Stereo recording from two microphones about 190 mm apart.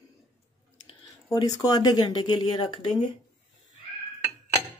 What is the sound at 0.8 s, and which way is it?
Speech, 20° left (ahead or behind).